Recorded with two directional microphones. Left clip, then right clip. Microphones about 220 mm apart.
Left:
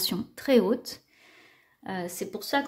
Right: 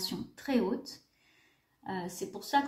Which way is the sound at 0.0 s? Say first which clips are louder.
Left 8 dB; 40° left (ahead or behind).